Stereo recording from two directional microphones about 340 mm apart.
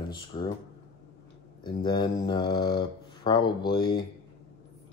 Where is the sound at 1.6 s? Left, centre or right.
Centre.